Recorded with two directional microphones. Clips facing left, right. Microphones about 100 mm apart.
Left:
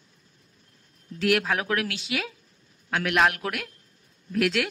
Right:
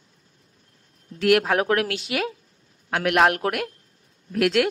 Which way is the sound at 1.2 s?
50° right (ahead or behind).